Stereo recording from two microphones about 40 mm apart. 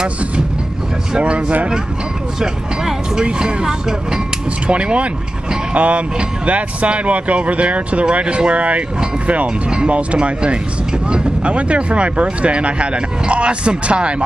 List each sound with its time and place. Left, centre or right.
1.1 s speech: right
2.4 s speech: centre
4.6 s speech: right